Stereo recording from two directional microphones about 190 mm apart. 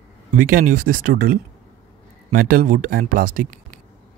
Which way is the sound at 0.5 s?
50° right (ahead or behind).